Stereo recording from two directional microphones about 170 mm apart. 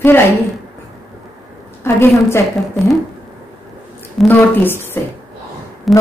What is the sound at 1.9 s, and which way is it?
Speech, 15° left (ahead or behind).